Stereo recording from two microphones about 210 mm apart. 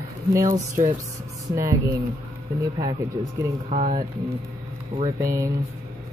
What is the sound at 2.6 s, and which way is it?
Speech, 15° right (ahead or behind).